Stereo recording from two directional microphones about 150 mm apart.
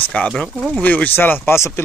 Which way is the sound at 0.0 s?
5° left (ahead or behind).